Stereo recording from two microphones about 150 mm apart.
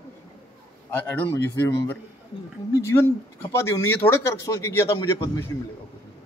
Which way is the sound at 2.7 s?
20° left (ahead or behind).